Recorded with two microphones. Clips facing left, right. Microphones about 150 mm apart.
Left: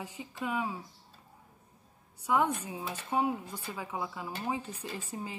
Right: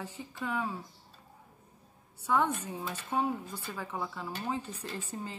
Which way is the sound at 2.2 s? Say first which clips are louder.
Left 1 dB; 10° left (ahead or behind).